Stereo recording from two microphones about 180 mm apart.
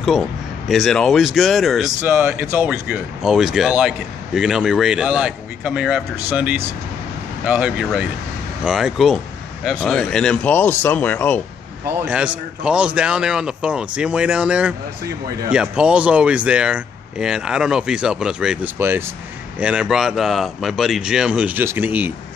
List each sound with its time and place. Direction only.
0.7 s speech: centre (ahead or behind)
2.1 s speech: 10° right (ahead or behind); by 11.4 s 10° left (ahead or behind)
11.8 s speech: 10° right (ahead or behind)